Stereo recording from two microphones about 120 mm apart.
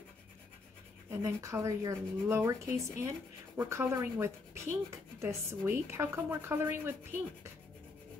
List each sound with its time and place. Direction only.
1.1 s speech: 25° right (ahead or behind)